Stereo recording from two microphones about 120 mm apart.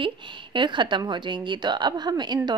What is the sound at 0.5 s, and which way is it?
A woman's voice, 40° right (ahead or behind).